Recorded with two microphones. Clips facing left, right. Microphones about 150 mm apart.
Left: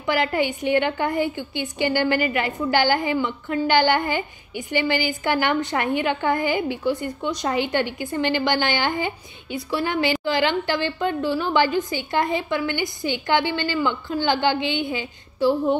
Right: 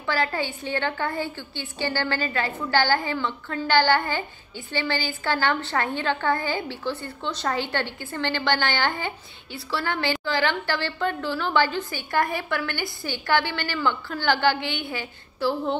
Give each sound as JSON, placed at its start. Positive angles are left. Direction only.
{"t": 0.0, "sound": "a woman's voice", "side_deg": 15}